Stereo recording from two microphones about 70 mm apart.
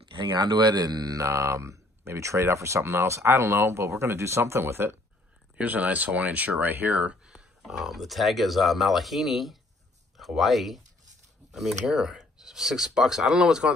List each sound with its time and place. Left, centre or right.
0.2 s speech: right
1.2 s speech: right
5.6 s speech: right
7.3 s speech: centre
11.8 s speech: centre